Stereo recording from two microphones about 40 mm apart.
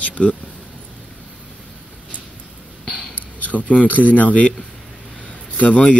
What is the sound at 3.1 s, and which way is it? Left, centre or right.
Speech, left.